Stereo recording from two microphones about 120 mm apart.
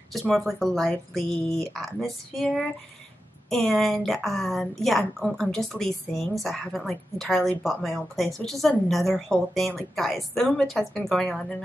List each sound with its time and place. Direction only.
0.3 s a woman's voice: centre (ahead or behind)